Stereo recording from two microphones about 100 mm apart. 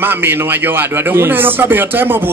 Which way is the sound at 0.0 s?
20° right (ahead or behind).